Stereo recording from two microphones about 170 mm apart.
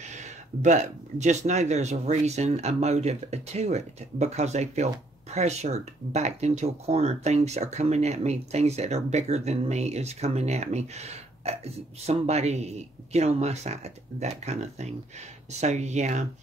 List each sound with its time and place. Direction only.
0.0 s speech: 45° right (ahead or behind)